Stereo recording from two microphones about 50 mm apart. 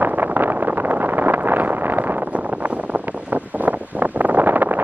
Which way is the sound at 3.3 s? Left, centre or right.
Right.